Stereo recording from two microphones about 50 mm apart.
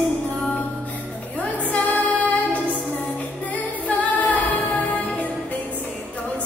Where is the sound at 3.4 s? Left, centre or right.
Left.